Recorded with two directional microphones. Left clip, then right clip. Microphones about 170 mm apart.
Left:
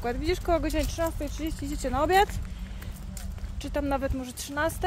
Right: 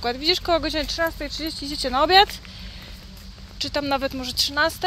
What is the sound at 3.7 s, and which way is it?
Speech, 20° right (ahead or behind).